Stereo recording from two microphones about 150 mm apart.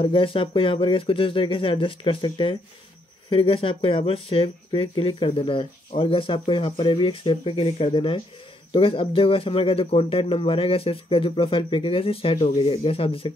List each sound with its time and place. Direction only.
0.0 s speech: 35° left (ahead or behind)